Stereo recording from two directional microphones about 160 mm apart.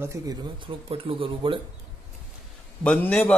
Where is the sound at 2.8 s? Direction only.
5° left (ahead or behind).